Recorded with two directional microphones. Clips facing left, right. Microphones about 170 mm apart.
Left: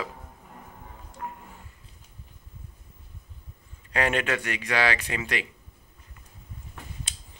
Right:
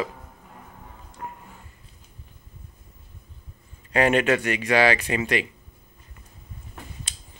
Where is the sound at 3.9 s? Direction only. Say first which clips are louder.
Right 6 dB; 10° right (ahead or behind).